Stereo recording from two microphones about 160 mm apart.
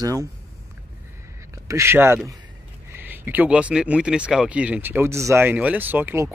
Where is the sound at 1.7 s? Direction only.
15° right (ahead or behind).